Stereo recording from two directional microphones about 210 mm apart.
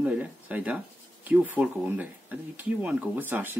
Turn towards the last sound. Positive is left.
turn(degrees=-10)  # may be behind; listen again after turning